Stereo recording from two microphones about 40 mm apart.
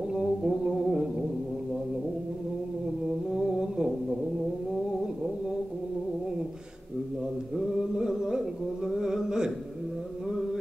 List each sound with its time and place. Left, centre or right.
0.5 s music: centre
3.3 s music: centre
8.0 s a sound: centre